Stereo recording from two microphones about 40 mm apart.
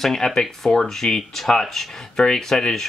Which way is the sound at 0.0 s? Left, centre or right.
Centre.